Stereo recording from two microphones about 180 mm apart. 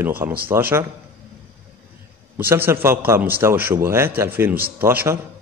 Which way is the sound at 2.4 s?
10° right (ahead or behind).